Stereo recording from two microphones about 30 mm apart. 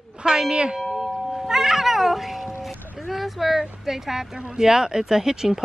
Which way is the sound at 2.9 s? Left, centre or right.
Centre.